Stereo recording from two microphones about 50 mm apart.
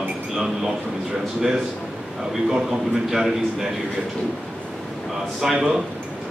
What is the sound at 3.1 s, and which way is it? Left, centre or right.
Speech, centre.